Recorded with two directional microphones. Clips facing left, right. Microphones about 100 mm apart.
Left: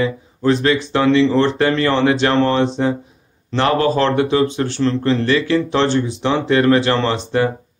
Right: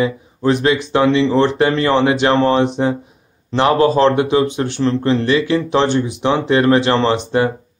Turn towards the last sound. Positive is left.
turn(degrees=-20)  # may be behind; listen again after turning